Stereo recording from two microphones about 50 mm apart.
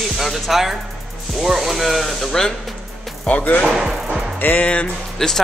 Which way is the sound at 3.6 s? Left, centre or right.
Centre.